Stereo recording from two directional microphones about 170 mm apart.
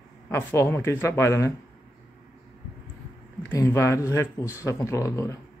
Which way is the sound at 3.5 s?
15° left (ahead or behind).